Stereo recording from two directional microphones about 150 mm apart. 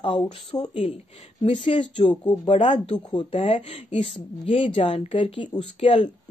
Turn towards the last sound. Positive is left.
turn(degrees=40)  # may be behind; listen again after turning